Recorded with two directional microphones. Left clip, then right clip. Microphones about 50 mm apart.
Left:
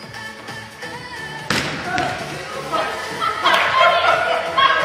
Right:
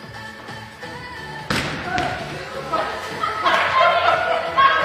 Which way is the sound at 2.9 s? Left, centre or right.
Left.